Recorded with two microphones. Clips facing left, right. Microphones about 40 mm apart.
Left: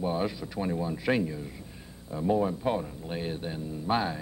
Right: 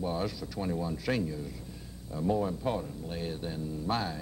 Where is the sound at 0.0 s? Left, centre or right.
Left.